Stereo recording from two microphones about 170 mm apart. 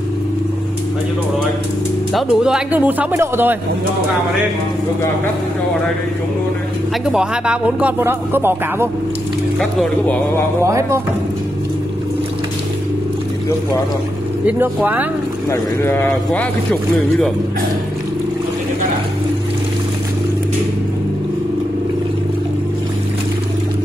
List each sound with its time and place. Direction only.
2.1 s speech: 5° right (ahead or behind)
7.1 s speech: 5° right (ahead or behind)
9.6 s speech: 5° left (ahead or behind)
10.6 s speech: 15° right (ahead or behind)
14.4 s speech: 10° right (ahead or behind)
15.8 s speech: 15° left (ahead or behind)